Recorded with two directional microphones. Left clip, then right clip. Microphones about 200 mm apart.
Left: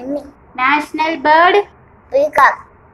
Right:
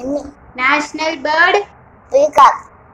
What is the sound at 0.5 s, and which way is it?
A woman's voice, 45° left (ahead or behind).